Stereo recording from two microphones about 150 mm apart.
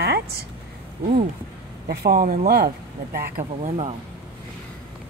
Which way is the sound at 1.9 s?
85° right.